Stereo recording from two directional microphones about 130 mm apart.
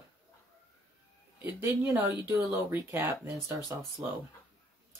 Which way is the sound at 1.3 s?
15° right (ahead or behind).